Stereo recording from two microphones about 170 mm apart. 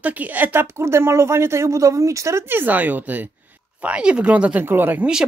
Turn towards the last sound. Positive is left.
turn(degrees=-5)  # may be behind; listen again after turning